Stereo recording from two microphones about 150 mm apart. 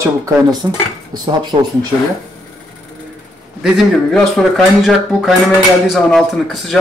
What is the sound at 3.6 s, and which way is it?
Speech, centre (ahead or behind).